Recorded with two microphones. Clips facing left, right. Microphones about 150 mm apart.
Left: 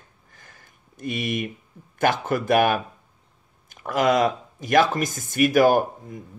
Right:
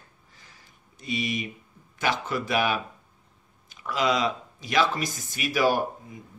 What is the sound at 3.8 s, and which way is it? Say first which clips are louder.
Speech: left 5 dB; 50° left (ahead or behind).